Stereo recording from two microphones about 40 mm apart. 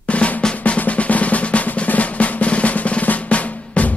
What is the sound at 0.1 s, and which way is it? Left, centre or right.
Drum roll, left.